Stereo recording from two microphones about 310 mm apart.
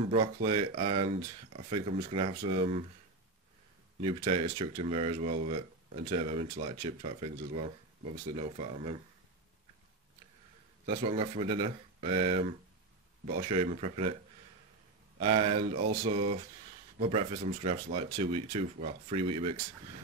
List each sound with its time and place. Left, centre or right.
0.1 s speech: centre
4.0 s speech: centre
10.9 s speech: centre
15.1 s speech: centre
18.1 s speech: right
18.6 s speech: centre